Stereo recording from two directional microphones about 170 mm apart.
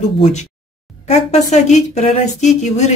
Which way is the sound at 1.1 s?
40° left (ahead or behind).